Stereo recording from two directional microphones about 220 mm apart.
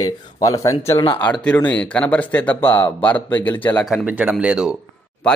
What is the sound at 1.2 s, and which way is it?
Speech, 5° left (ahead or behind).